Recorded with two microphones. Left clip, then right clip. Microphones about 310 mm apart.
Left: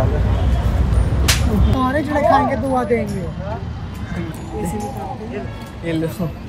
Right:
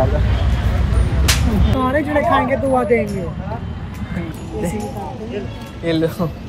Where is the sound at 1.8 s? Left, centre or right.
Left.